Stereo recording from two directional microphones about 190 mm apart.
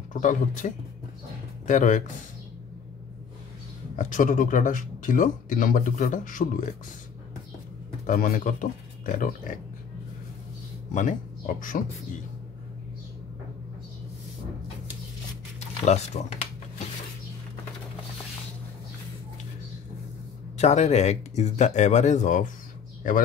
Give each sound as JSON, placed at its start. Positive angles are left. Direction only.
{"t": 0.1, "sound": "speech", "side_deg": 45}
{"t": 4.0, "sound": "speech", "side_deg": 45}
{"t": 8.1, "sound": "speech", "side_deg": 45}
{"t": 10.9, "sound": "speech", "side_deg": 40}
{"t": 15.8, "sound": "speech", "side_deg": 35}
{"t": 20.5, "sound": "speech", "side_deg": 35}